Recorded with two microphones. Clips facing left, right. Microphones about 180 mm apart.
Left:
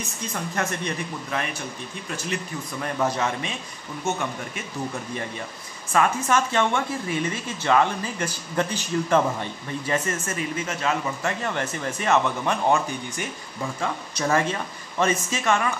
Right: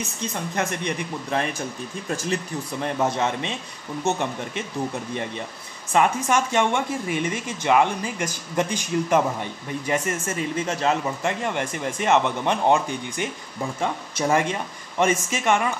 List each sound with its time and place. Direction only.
0.3 s speech: 20° right (ahead or behind)
1.3 s speech: 30° right (ahead or behind)
2.8 s speech: 25° right (ahead or behind)
5.9 s speech: 15° right (ahead or behind)
10.6 s speech: 30° right (ahead or behind)
11.2 s speech: 15° right (ahead or behind)